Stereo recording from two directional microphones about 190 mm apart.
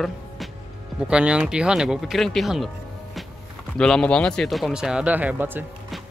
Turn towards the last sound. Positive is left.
turn(degrees=-10)  # may be behind; listen again after turning